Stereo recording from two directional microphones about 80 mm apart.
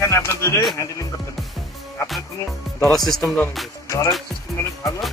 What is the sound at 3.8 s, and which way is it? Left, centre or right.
Speech, left.